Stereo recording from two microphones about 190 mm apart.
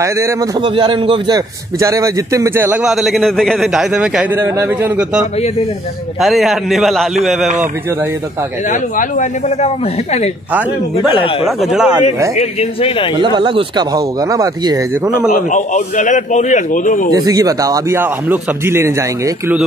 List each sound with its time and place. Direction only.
0.0 s a man's voice: 20° right (ahead or behind)
6.2 s a man's voice: centre (ahead or behind)
8.9 s a man's voice: 40° left (ahead or behind)
10.5 s a man's voice: centre (ahead or behind)
12.4 s a man's voice: 35° left (ahead or behind)
13.2 s speech: 25° right (ahead or behind)
15.3 s a man's voice: 40° left (ahead or behind)
17.1 s a man's voice: 20° right (ahead or behind)